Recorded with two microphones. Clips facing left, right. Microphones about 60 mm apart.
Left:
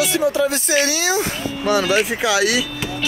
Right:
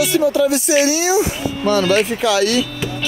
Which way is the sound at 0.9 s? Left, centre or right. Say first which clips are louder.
Right 4 dB; left.